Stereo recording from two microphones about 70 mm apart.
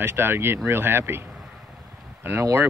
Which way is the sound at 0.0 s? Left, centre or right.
Right.